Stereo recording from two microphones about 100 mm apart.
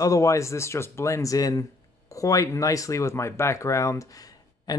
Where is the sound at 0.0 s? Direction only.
30° left (ahead or behind).